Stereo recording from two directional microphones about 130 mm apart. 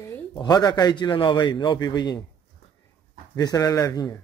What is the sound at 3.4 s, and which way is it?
Speech, 30° left (ahead or behind).